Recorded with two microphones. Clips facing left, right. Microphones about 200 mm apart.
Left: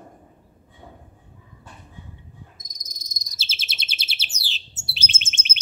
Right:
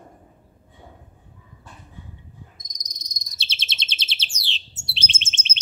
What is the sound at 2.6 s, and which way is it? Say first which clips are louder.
Bird vocalization: even; 5° left (ahead or behind).